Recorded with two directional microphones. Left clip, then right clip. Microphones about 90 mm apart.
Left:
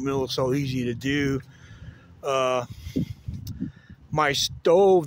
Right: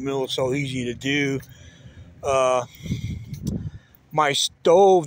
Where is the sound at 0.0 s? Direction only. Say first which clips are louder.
Right 1 dB; 65° left (ahead or behind).